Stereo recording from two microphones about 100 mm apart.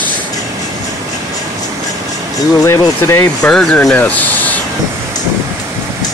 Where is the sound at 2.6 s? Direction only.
30° left (ahead or behind).